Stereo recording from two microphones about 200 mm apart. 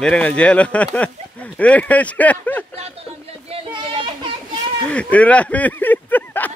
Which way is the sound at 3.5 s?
25° right (ahead or behind).